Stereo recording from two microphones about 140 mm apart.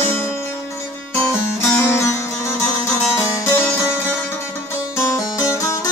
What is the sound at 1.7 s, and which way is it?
Music, 20° left (ahead or behind).